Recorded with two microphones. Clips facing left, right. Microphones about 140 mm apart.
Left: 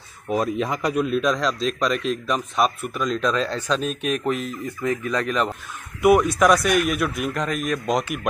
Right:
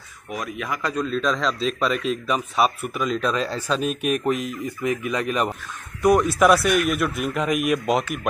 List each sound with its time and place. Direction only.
0.3 s speech: 30° left (ahead or behind)
0.8 s a man's voice: 10° left (ahead or behind); by 5.5 s 10° right (ahead or behind)
6.0 s a man's voice: centre (ahead or behind)
7.4 s speech: 10° right (ahead or behind)